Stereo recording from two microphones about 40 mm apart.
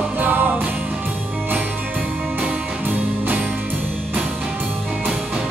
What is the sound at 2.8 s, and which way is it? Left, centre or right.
Music, right.